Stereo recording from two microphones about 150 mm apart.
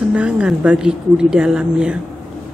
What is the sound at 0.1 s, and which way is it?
A woman's voice, 10° right (ahead or behind).